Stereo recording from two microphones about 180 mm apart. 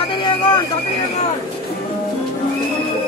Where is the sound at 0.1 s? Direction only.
25° left (ahead or behind).